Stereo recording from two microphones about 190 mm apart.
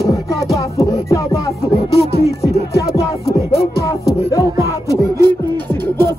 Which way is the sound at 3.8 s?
15° left (ahead or behind).